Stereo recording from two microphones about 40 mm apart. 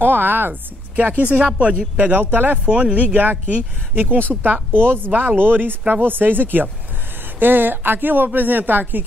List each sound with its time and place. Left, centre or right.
0.0 s speech: right
1.1 s speech: right
2.6 s speech: right
3.1 s speech: right
4.4 s speech: right